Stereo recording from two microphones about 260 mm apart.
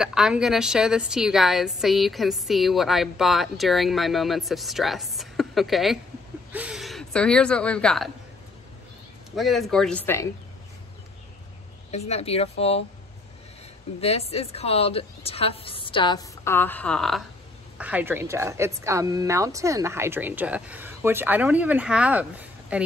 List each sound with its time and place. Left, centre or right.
0.0 s a woman's voice: centre
9.3 s a woman's voice: centre
11.9 s a woman's voice: left
14.0 s a woman's voice: left; by 22.8 s centre